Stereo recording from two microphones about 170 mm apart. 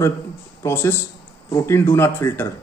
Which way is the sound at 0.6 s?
15° left (ahead or behind).